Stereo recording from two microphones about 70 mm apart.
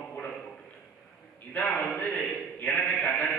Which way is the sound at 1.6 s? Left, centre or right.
Left.